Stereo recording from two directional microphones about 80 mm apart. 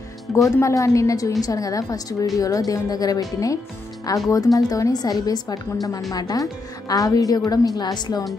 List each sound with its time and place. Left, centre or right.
0.6 s a woman's voice: left